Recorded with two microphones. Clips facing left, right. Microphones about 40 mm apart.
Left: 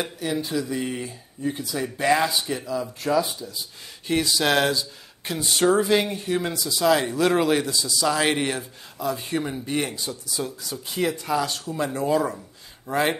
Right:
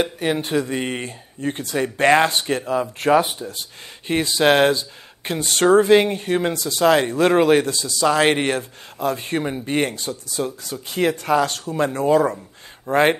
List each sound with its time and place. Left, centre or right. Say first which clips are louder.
0.2 s speech: right 5 dB; right
4.1 s speech: right 4 dB; right
5.4 s speech: right 5 dB; right
7.6 s speech: right 4 dB; right
8.5 s speech: right 6 dB; right